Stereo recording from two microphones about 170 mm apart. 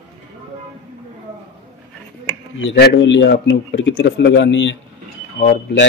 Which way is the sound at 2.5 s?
90° left.